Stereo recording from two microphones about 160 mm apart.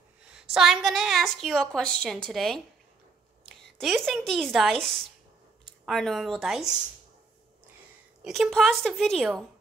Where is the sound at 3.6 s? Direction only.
Centre (ahead or behind).